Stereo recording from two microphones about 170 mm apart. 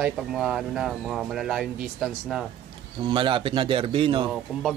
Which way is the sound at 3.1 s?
30° right (ahead or behind).